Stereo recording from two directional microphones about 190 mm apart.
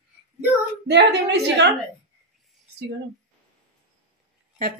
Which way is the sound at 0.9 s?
65° right (ahead or behind).